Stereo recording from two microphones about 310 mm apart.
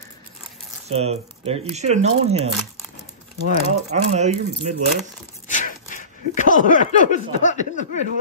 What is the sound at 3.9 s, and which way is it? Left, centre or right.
Speech, right.